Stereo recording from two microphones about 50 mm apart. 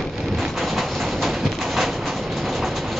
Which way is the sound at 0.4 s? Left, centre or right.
Centre.